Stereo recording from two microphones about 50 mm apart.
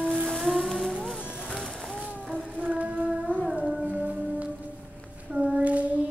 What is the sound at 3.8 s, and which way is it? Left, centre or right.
Music, right.